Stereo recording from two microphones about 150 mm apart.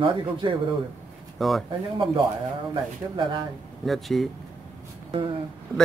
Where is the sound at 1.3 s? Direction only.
Centre (ahead or behind).